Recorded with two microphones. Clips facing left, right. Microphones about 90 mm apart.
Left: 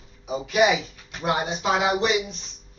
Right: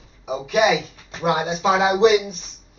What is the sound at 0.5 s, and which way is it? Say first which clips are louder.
Speech: right 2 dB; 25° right (ahead or behind).